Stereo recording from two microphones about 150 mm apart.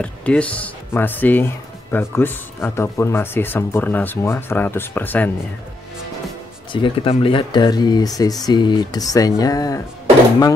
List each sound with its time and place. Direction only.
0.0 s speech: 10° left (ahead or behind)
6.7 s speech: 35° left (ahead or behind)